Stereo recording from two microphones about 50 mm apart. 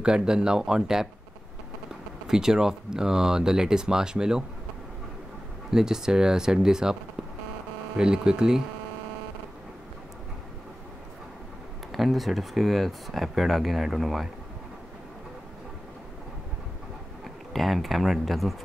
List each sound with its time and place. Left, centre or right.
0.0 s speech: centre
2.2 s speech: centre
5.7 s speech: centre
8.0 s speech: centre
11.9 s speech: centre
17.5 s speech: centre